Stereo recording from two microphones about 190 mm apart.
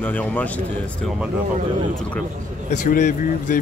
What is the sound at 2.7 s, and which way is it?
Speech, 45° left (ahead or behind).